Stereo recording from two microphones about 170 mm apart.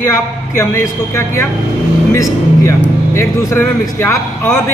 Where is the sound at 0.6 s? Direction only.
15° left (ahead or behind).